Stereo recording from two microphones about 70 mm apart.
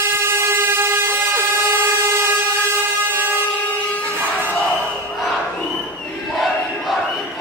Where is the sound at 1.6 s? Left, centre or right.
Right.